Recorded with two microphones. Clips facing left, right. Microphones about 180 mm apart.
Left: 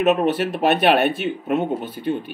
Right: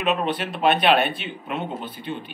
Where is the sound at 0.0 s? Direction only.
45° left (ahead or behind).